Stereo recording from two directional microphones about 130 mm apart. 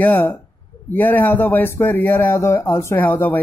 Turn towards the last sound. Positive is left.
turn(degrees=15)  # may be behind; listen again after turning